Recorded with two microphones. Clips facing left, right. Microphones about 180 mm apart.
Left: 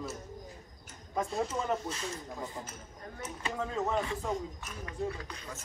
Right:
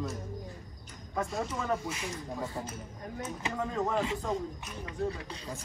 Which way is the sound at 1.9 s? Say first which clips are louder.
Right 1 dB; 10° right (ahead or behind).